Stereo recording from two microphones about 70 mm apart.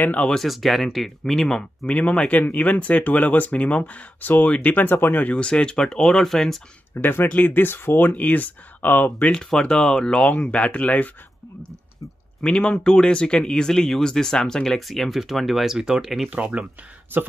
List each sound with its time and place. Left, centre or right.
0.0 s speech: left
0.3 s speech: centre
2.0 s speech: centre
7.0 s speech: left
9.3 s speech: centre
12.4 s speech: centre
16.3 s speech: centre
17.1 s speech: right